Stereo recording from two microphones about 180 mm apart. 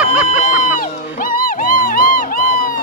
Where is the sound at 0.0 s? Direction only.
5° right (ahead or behind).